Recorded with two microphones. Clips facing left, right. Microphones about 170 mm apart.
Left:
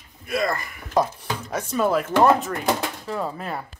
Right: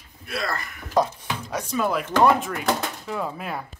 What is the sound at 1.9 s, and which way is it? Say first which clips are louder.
Speech: left 1 dB; 5° left (ahead or behind).